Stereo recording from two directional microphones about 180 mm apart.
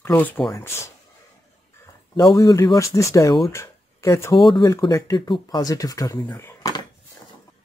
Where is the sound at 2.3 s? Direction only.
15° left (ahead or behind).